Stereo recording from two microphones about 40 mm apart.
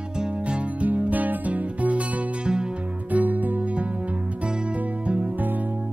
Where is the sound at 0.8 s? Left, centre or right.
Right.